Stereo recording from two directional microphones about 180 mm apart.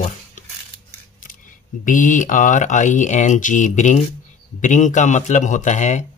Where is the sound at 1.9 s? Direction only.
45° left (ahead or behind).